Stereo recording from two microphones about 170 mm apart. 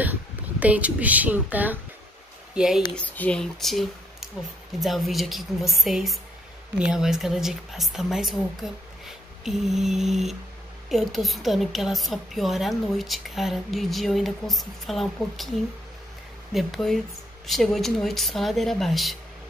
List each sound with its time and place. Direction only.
0.0 s a woman's voice: 10° right (ahead or behind)
3.1 s a woman's voice: 10° left (ahead or behind)
16.5 s a woman's voice: centre (ahead or behind)